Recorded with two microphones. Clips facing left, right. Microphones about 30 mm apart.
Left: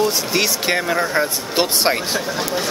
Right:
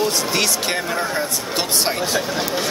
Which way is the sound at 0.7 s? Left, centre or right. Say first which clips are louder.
Left 3 dB; centre.